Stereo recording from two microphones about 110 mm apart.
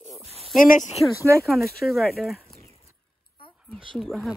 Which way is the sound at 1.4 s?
Centre (ahead or behind).